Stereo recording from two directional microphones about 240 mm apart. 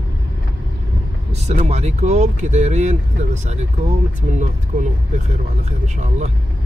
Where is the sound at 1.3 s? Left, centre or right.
Right.